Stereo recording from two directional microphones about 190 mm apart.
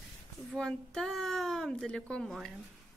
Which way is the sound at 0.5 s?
5° left (ahead or behind).